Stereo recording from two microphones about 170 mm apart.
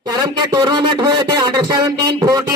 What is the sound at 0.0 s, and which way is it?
Speech, 25° right (ahead or behind).